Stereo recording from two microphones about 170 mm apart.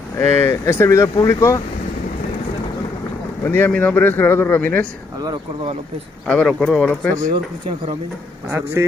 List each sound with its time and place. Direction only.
0.2 s speech: 15° left (ahead or behind)
3.4 s speech: 10° left (ahead or behind)
6.2 s speech: 5° left (ahead or behind)
8.5 s a man's voice: 15° right (ahead or behind)